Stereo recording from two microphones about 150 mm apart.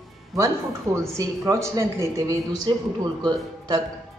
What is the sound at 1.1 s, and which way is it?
Speech, 20° right (ahead or behind).